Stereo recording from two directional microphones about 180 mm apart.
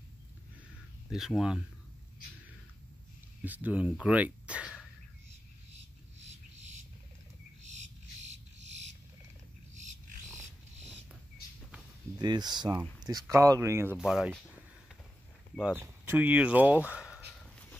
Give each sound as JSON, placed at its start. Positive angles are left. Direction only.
{"t": 1.1, "sound": "speech", "side_deg": 0}
{"t": 3.4, "sound": "speech", "side_deg": -10}
{"t": 12.2, "sound": "speech", "side_deg": -25}
{"t": 13.9, "sound": "speech", "side_deg": -5}
{"t": 15.8, "sound": "speech", "side_deg": -10}
{"t": 17.4, "sound": "dog", "side_deg": 10}